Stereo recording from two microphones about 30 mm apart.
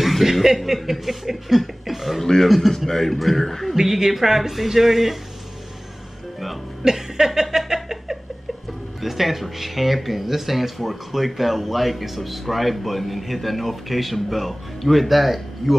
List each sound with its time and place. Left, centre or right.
0.0 s a sound: centre
0.8 s speech: centre
3.7 s speech: centre
6.8 s speech: centre
7.4 s a sound: centre
9.0 s speech: centre